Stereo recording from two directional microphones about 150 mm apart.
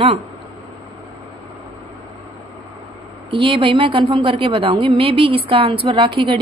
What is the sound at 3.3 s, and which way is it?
A woman's voice, 35° right (ahead or behind).